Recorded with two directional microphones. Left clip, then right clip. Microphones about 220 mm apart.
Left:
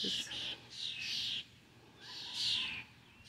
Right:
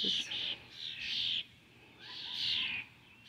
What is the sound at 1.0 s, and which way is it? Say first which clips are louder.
Bird: right 5 dB; 40° left (ahead or behind).